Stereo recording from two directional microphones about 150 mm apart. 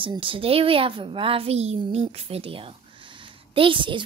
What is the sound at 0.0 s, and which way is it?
A woman's voice, 35° right (ahead or behind).